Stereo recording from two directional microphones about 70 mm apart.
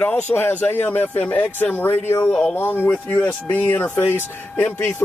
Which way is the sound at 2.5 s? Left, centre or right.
Left.